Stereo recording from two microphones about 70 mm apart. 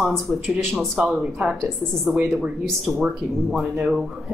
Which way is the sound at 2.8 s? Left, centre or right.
Centre.